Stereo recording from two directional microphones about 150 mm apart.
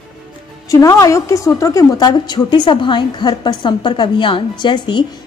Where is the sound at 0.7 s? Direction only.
20° left (ahead or behind).